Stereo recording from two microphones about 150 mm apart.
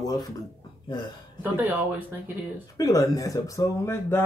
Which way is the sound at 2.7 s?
25° left (ahead or behind).